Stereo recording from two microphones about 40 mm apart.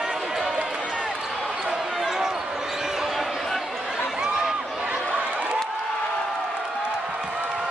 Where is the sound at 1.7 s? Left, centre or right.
Centre.